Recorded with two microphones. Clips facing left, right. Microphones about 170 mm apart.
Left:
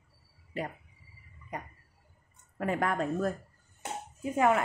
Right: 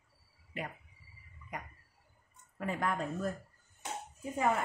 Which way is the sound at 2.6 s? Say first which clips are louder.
Left 5 dB; 65° left (ahead or behind).